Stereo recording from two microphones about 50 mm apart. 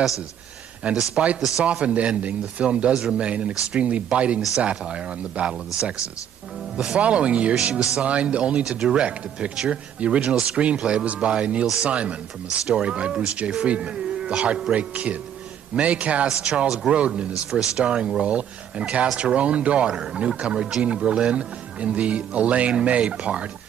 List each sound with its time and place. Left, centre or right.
0.9 s speech: right
2.9 s speech: centre
3.2 s speech: right
17.5 s speech: centre